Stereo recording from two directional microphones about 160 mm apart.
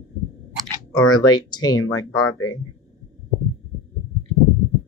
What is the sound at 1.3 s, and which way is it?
Speech, 25° left (ahead or behind).